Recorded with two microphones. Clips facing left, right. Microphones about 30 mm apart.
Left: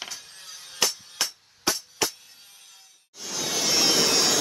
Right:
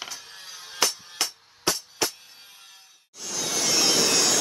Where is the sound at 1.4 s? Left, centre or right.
Centre.